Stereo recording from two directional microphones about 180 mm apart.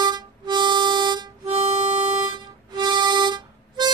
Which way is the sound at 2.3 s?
25° right (ahead or behind).